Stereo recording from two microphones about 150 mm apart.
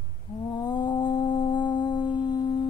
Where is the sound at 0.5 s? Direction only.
30° left (ahead or behind).